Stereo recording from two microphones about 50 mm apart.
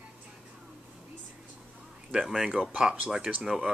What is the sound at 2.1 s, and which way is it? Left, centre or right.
Speech, centre.